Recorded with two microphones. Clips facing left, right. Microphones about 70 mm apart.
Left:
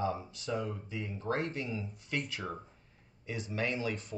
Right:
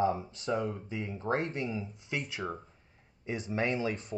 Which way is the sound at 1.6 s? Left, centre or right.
Centre.